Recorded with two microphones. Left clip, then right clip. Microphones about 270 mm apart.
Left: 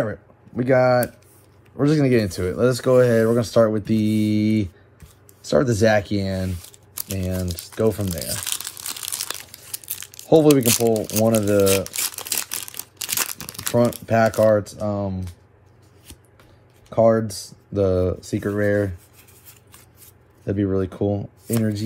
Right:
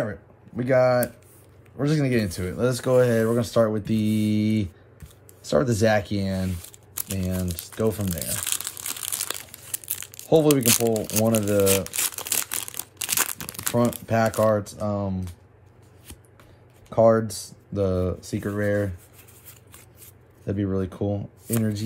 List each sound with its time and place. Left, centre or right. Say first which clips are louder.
0.0 s speech: left 4 dB; centre
7.0 s crumpling: left 3 dB; centre
14.4 s speech: left 4 dB; centre
16.9 s speech: left 1 dB; centre
17.7 s speech: left 5 dB; centre
20.4 s speech: left 5 dB; centre